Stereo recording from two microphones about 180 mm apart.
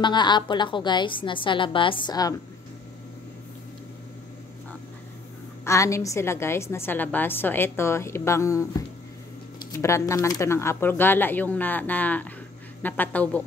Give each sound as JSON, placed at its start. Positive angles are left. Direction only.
{"t": 0.0, "sound": "a woman's voice", "side_deg": 25}
{"t": 5.7, "sound": "a woman's voice", "side_deg": 15}
{"t": 9.7, "sound": "a woman's voice", "side_deg": 15}